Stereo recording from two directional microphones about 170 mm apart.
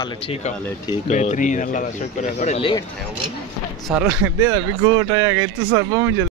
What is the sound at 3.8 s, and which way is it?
Speech, 5° right (ahead or behind).